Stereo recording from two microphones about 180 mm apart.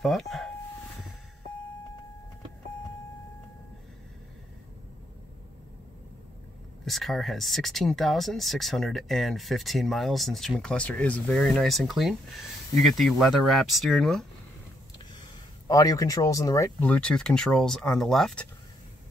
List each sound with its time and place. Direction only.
0.0 s speech: centre (ahead or behind)
6.8 s speech: centre (ahead or behind)
15.7 s speech: 20° left (ahead or behind); by 18.5 s 5° left (ahead or behind)